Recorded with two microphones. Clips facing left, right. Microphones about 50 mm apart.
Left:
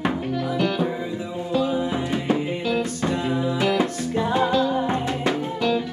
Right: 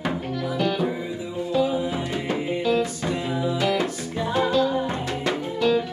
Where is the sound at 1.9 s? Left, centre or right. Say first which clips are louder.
Left 3 dB; left.